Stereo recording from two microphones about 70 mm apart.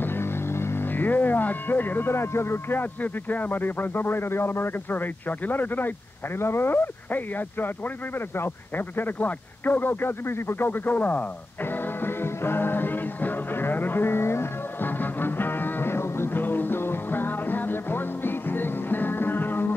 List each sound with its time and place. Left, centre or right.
0.0 s speech: left
8.4 s radio: left